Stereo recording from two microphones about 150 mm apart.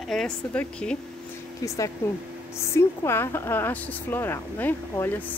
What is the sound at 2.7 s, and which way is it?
Speech, 15° left (ahead or behind).